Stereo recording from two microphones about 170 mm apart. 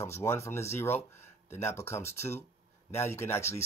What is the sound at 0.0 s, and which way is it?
Speech, 15° left (ahead or behind).